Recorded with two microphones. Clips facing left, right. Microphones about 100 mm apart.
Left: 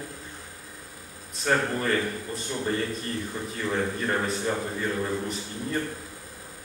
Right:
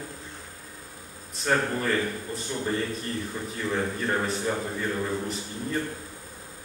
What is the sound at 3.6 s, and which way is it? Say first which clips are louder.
A man's voice: even; centre (ahead or behind).